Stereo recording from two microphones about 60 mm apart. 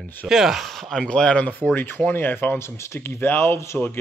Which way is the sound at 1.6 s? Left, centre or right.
Left.